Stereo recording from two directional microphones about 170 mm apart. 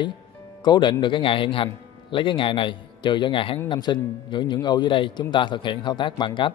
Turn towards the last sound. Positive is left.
turn(degrees=25)  # may be behind; listen again after turning